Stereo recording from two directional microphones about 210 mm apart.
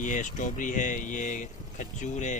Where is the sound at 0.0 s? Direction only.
40° left (ahead or behind).